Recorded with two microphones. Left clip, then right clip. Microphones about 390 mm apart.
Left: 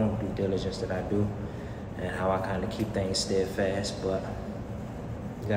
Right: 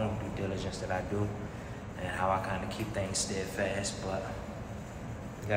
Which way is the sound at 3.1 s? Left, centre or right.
Centre.